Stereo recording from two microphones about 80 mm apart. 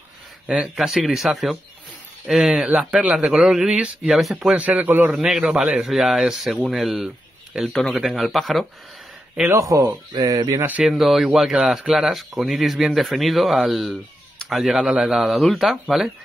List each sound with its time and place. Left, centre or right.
0.7 s speech: centre
2.6 s a man's voice: centre
3.3 s a man's voice: centre
4.0 s speech: centre
4.6 s a man's voice: centre
5.1 s speech: centre
9.5 s speech: right
10.7 s a man's voice: centre
11.0 s speech: centre